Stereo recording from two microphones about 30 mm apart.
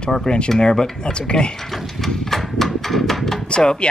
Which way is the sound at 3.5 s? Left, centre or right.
Left.